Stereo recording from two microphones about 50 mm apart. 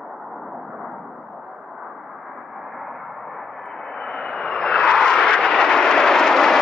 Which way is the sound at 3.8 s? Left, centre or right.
Centre.